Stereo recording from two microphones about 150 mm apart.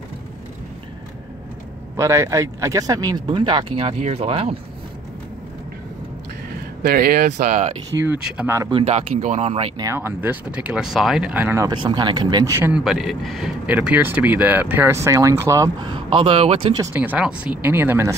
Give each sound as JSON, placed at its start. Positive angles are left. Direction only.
{"t": 2.0, "sound": "speech", "side_deg": -20}
{"t": 6.9, "sound": "speech", "side_deg": -85}
{"t": 8.0, "sound": "speech", "side_deg": -15}
{"t": 8.8, "sound": "speech", "side_deg": -50}
{"t": 9.8, "sound": "speech", "side_deg": -20}
{"t": 11.6, "sound": "speech", "side_deg": -30}
{"t": 12.5, "sound": "speech", "side_deg": -15}
{"t": 12.8, "sound": "speech", "side_deg": -5}
{"t": 16.9, "sound": "speech", "side_deg": -10}